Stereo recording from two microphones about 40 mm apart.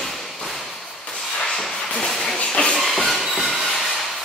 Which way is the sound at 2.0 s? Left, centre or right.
Centre.